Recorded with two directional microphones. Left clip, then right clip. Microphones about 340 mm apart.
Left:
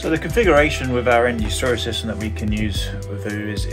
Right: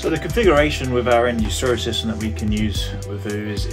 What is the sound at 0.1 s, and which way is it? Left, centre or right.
Speech, centre.